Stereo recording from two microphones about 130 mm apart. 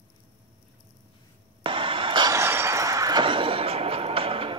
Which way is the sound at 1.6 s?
40° right (ahead or behind).